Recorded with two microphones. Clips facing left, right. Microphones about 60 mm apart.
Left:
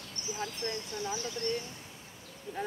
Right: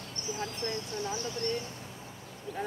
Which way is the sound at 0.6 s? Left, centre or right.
Right.